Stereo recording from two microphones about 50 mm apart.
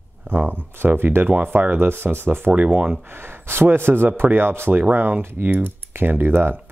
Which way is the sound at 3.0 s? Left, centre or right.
Right.